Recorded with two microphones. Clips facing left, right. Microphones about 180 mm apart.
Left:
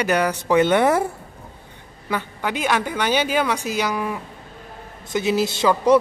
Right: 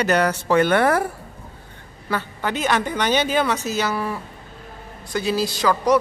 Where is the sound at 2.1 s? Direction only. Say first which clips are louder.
Even; 10° left (ahead or behind).